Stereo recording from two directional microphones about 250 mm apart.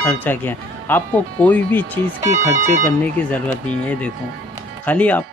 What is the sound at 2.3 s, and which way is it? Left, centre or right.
Speech, right.